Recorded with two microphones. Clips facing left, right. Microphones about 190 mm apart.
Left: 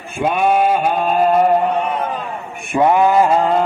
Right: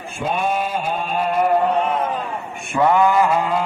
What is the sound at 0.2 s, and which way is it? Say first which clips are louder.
Sheep: left 7 dB; 65° left (ahead or behind).